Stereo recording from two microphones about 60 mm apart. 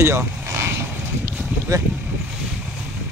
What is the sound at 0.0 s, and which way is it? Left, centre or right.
Vehicle, right.